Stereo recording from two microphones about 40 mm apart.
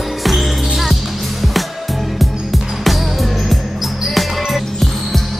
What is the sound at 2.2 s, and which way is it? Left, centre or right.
Music, centre.